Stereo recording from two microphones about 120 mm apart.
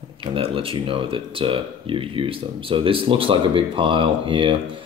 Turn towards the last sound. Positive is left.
turn(degrees=-45)  # may be behind; listen again after turning